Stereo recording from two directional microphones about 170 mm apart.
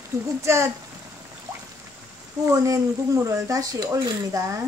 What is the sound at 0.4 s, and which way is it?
Speech, 15° right (ahead or behind).